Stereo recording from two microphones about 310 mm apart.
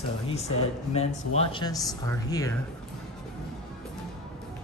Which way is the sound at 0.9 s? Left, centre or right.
Centre.